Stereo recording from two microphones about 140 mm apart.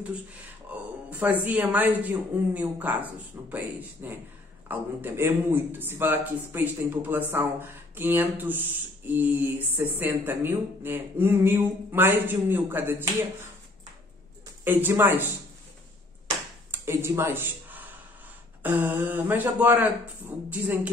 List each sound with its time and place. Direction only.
1.1 s speech: 10° right (ahead or behind)
14.6 s speech: 15° right (ahead or behind)
16.7 s speech: 15° right (ahead or behind)